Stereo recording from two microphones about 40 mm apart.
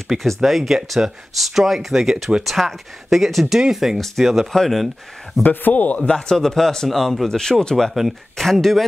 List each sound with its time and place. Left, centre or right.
0.2 s speech: centre
5.4 s speech: left
5.9 s speech: left
6.3 s speech: centre
7.2 s speech: centre